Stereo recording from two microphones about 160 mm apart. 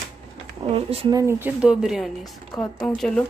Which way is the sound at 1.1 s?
15° right (ahead or behind).